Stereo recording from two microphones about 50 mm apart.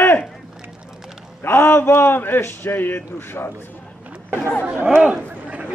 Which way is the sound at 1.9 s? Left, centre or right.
Left.